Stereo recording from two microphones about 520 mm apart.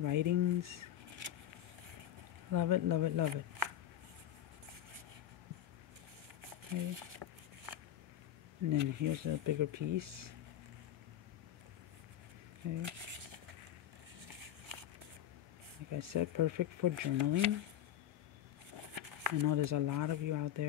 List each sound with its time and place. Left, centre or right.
0.0 s speech: right
2.5 s speech: right
6.7 s speech: right
8.7 s speech: right
15.9 s speech: right
18.9 s speech: right